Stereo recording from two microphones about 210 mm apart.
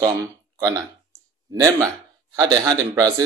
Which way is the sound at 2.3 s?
20° right (ahead or behind).